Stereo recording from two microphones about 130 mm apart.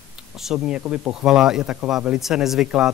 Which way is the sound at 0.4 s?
5° right (ahead or behind).